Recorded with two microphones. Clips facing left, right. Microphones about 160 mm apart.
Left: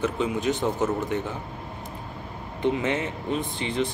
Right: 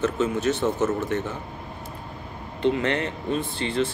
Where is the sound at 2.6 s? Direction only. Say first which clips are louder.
Right 2 dB; 15° left (ahead or behind).